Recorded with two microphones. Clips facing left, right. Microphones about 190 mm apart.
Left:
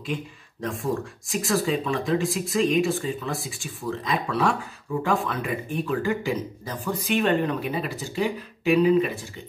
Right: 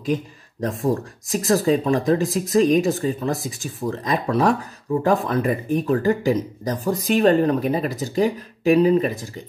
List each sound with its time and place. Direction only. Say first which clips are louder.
0.0 s speech: right 7 dB; 40° right (ahead or behind)